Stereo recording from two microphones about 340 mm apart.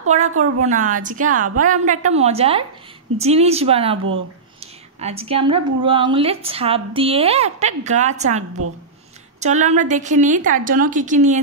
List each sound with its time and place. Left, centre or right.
0.4 s a woman's voice: right
5.0 s a woman's voice: centre